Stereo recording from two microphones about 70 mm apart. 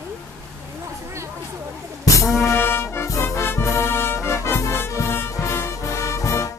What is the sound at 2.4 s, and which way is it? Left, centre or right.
Music, left.